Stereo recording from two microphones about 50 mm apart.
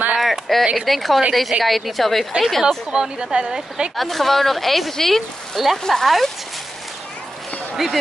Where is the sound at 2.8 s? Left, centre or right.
Centre.